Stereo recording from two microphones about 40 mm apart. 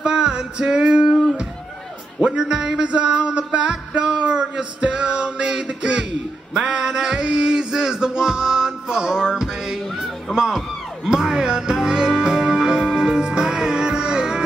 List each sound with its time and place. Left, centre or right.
0.0 s music: right
2.2 s music: centre
2.9 s a sound: right
6.5 s music: centre
10.3 s a sound: centre
11.1 s music: centre